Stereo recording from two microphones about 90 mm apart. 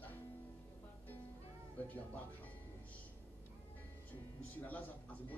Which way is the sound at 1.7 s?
15° left (ahead or behind).